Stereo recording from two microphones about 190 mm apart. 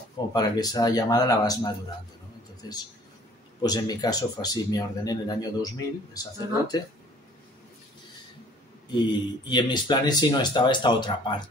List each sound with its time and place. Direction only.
0.3 s speech: 20° left (ahead or behind)
3.6 s speech: 20° left (ahead or behind)
8.9 s speech: 25° left (ahead or behind)